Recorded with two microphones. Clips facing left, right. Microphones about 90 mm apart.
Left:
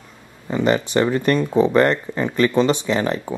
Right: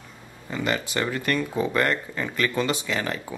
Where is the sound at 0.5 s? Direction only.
25° left (ahead or behind).